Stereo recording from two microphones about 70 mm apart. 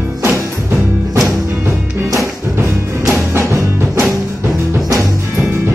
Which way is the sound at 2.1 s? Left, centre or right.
Right.